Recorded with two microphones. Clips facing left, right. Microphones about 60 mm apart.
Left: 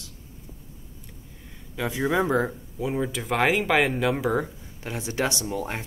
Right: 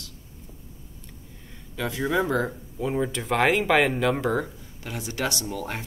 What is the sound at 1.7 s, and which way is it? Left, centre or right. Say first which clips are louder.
Speech: left 1 dB; centre.